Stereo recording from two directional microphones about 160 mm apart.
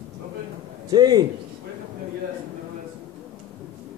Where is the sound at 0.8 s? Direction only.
25° right (ahead or behind).